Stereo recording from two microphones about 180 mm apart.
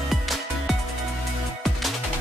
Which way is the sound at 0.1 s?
Centre (ahead or behind).